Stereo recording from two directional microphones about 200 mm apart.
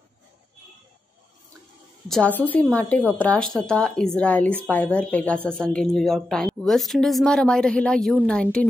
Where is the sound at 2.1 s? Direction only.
5° left (ahead or behind).